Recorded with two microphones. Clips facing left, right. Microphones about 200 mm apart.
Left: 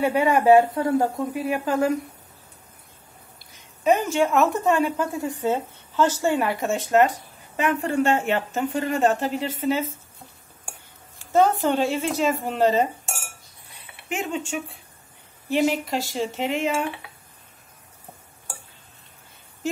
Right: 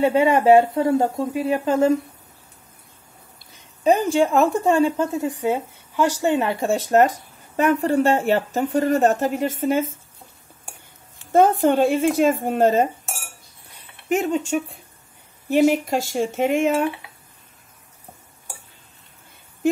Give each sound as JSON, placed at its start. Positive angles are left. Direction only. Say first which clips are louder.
{"t": 0.0, "sound": "speech", "louder": "right 3 dB", "side_deg": -20}
{"t": 3.8, "sound": "speech", "louder": "right 3 dB", "side_deg": -35}
{"t": 11.3, "sound": "speech", "louder": "right 4 dB", "side_deg": -50}
{"t": 14.0, "sound": "speech", "louder": "right 7 dB", "side_deg": -40}